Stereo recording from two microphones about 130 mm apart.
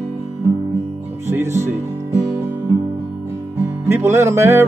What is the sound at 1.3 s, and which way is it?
Music, 20° right (ahead or behind).